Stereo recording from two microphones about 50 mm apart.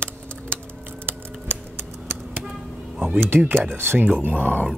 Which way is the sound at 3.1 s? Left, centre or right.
Right.